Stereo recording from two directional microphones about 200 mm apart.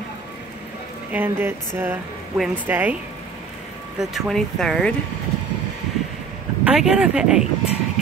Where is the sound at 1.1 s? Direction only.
10° right (ahead or behind).